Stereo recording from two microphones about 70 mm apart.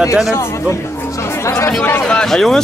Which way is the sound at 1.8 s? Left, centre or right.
Left.